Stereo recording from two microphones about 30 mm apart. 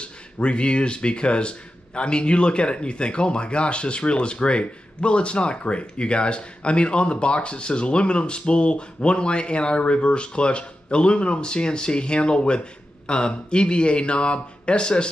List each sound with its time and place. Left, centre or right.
0.0 s speech: left